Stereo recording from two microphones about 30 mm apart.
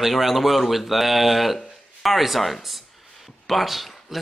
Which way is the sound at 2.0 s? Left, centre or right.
Centre.